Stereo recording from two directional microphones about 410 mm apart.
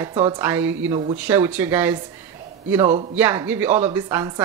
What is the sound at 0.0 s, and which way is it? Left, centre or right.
Speech, centre.